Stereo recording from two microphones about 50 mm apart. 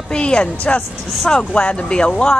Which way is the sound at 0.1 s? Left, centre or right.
Centre.